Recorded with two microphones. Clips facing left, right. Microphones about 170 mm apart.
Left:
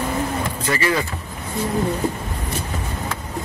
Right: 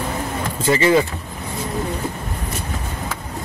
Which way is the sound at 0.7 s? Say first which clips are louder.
Right 6 dB; 25° right (ahead or behind).